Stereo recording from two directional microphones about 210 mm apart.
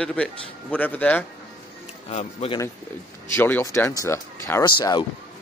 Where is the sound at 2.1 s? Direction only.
30° left (ahead or behind).